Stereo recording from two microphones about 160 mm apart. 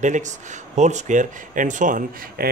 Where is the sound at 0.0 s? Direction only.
50° right (ahead or behind).